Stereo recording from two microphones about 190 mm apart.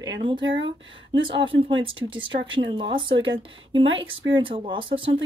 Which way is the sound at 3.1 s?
85° right.